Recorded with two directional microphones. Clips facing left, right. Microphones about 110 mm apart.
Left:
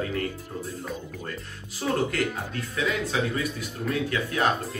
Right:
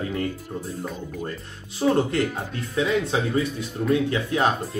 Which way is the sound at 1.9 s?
25° right (ahead or behind).